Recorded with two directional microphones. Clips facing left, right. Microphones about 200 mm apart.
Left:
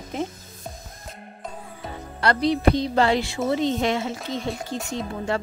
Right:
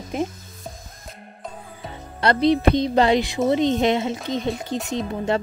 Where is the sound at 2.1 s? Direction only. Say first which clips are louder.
Right 4 dB; 20° right (ahead or behind).